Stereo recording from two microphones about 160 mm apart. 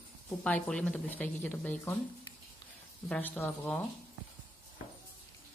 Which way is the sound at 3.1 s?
10° left (ahead or behind).